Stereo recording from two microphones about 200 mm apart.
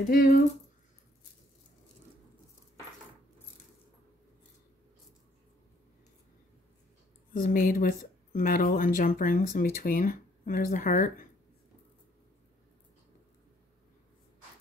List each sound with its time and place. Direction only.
0.1 s speech: 45° left (ahead or behind)
7.3 s speech: 40° left (ahead or behind)